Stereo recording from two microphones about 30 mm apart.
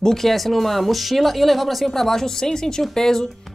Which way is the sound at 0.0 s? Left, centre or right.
Centre.